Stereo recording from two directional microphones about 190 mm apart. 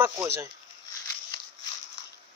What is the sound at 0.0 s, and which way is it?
Speech, 15° right (ahead or behind).